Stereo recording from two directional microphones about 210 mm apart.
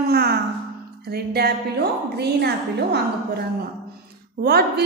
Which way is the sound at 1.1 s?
50° right (ahead or behind).